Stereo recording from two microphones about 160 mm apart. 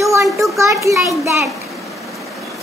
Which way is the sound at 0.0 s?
20° right (ahead or behind).